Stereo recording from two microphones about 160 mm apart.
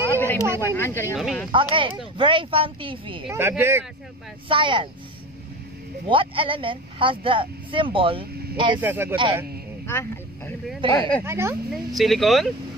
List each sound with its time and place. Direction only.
0.1 s a sound: 15° left (ahead or behind)
0.6 s speech: 15° left (ahead or behind)
1.1 s speech: centre (ahead or behind)
1.5 s speech: 35° right (ahead or behind)
3.3 s speech: 15° right (ahead or behind)
4.5 s speech: 30° right (ahead or behind)
6.0 s speech: 35° right (ahead or behind)
8.7 s speech: 15° right (ahead or behind)
9.8 s speech: 15° left (ahead or behind)
10.8 s speech: 30° right (ahead or behind)
11.2 s speech: 15° right (ahead or behind)
11.7 s speech: centre (ahead or behind)